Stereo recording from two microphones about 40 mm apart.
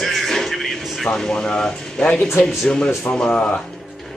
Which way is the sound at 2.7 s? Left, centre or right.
Left.